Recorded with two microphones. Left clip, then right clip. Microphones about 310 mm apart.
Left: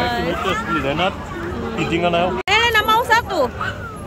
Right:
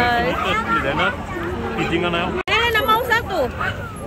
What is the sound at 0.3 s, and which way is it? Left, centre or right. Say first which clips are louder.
Speech: right 1 dB; left.